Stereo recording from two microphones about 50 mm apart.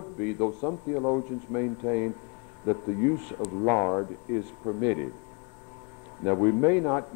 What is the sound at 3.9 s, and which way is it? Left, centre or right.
Speech, centre.